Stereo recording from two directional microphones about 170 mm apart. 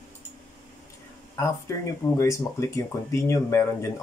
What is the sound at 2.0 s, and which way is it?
Speech, 20° left (ahead or behind).